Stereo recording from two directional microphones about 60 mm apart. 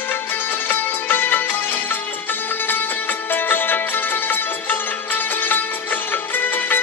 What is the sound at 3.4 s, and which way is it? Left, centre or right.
Music, left.